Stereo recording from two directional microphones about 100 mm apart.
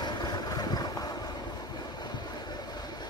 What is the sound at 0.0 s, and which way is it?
Vehicle, 45° left (ahead or behind).